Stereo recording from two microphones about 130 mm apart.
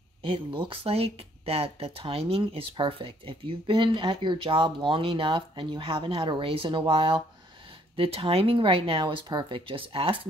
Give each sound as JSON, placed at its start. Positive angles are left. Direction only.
{"t": 0.2, "sound": "speech", "side_deg": -40}